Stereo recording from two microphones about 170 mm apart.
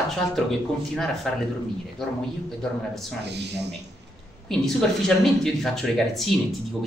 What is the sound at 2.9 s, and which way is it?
Speech, centre (ahead or behind).